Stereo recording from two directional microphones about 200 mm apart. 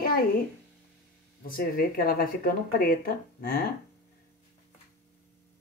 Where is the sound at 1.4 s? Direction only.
45° left (ahead or behind).